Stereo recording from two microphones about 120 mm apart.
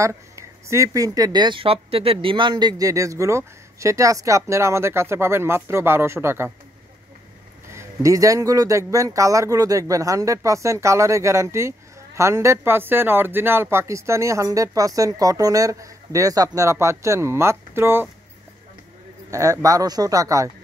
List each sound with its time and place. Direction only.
0.0 s speech: 25° right (ahead or behind); by 2.7 s 40° right (ahead or behind)
2.8 s speech: 25° right (ahead or behind)
7.7 s speech: 25° right (ahead or behind)
19.3 s speech: 25° right (ahead or behind)